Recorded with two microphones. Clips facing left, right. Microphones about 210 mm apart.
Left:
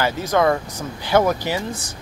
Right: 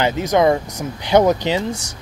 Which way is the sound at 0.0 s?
20° right (ahead or behind).